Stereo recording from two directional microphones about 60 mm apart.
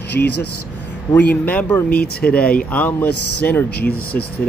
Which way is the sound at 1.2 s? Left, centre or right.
Left.